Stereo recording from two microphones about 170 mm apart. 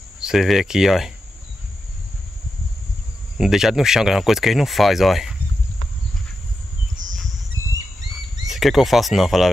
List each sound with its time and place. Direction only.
0.2 s speech: centre (ahead or behind)
3.3 s speech: 5° right (ahead or behind)
8.5 s speech: centre (ahead or behind)